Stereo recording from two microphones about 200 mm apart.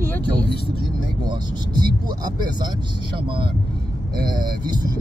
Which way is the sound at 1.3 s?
20° right (ahead or behind).